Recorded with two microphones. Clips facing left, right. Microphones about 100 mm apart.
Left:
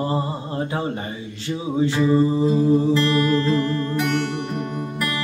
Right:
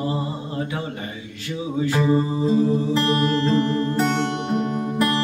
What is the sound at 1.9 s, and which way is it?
Music, 30° right (ahead or behind).